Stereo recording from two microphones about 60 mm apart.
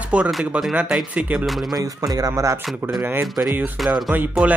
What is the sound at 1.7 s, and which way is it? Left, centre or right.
Speech, right.